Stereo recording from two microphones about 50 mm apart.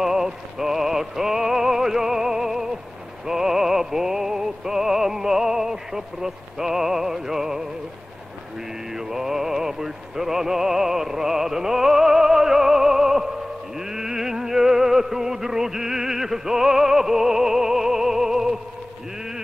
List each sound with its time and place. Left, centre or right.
0.0 s synthetic singing: centre
3.3 s music: centre
8.9 s music: centre